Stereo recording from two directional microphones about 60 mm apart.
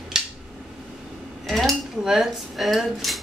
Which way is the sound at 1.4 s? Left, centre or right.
Centre.